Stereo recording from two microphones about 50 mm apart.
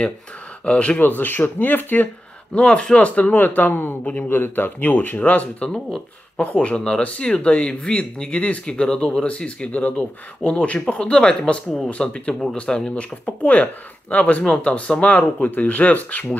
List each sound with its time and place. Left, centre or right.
0.7 s speech: left
1.0 s speech: left
2.5 s speech: centre
3.2 s speech: left
4.0 s speech: left
4.3 s speech: left; by 13.0 s centre
13.2 s speech: left
14.4 s speech: centre
15.1 s speech: left